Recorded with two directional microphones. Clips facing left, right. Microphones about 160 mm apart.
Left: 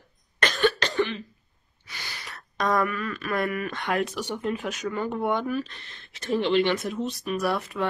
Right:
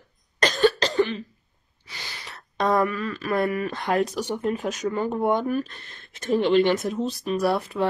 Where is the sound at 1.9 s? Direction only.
30° right (ahead or behind).